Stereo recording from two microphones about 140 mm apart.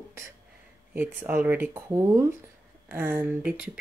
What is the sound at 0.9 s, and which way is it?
Speech, 15° right (ahead or behind).